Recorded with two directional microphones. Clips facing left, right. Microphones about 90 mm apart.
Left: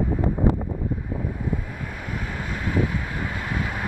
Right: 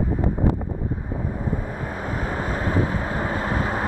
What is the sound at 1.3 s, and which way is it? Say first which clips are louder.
Vehicle: right 2 dB; 35° right (ahead or behind).